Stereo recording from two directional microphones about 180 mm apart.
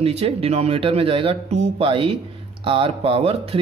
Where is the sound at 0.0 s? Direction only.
35° right (ahead or behind).